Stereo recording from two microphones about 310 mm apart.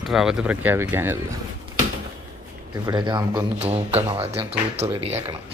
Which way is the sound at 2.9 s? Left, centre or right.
Centre.